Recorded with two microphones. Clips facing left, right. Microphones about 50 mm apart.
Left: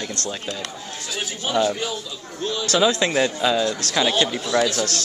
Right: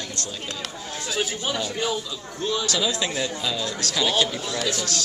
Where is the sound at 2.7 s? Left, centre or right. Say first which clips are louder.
Left 6 dB; left.